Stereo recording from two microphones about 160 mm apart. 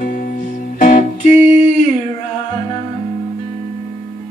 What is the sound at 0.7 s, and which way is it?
Music, 50° left (ahead or behind).